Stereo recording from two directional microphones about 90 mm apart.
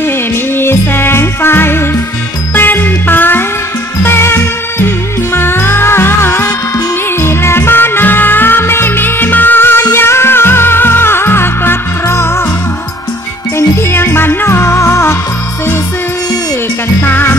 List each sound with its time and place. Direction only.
0.6 s jingle bell: 25° left (ahead or behind)
2.5 s music: 20° left (ahead or behind)
13.6 s music: 25° left (ahead or behind)
17.0 s music: 25° left (ahead or behind)